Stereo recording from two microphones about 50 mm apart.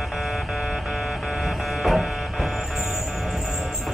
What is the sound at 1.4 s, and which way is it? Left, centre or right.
Printer, centre.